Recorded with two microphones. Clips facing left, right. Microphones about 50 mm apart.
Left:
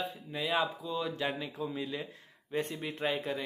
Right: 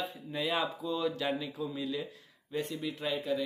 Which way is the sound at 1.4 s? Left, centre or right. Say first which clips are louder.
Even; left.